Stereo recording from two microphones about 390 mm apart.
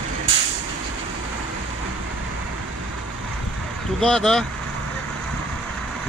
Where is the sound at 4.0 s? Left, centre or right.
Centre.